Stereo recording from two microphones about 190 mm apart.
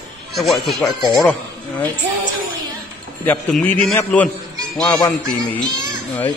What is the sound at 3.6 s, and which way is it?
Speech, 5° left (ahead or behind).